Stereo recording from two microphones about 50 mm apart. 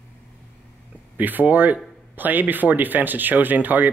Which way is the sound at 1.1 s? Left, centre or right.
Right.